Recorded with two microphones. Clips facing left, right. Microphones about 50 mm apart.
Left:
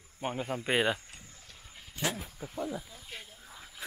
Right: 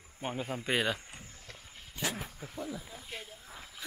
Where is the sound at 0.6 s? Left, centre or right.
Centre.